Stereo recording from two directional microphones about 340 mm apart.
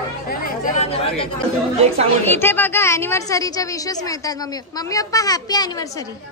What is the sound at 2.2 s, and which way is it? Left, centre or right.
A woman's voice, centre.